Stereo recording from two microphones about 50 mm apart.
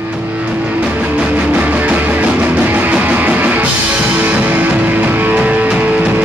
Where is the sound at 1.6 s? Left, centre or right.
Right.